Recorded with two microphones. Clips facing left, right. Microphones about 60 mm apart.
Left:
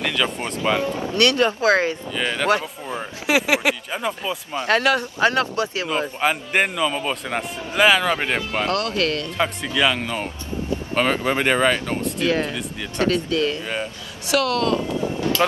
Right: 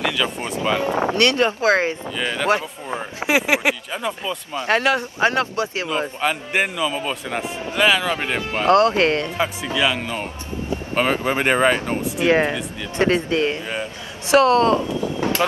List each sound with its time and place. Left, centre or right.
0.0 s a sound: centre
0.8 s speech: right
2.1 s speech: centre
2.4 s speech: right
3.9 s speech: centre
4.6 s speech: right
6.2 s speech: centre
8.6 s speech: right
9.8 s speech: centre; by 12.0 s right
12.3 s speech: right